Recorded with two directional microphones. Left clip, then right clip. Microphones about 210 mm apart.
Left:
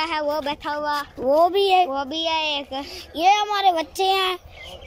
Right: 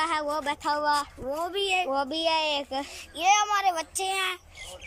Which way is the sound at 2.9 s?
25° left (ahead or behind).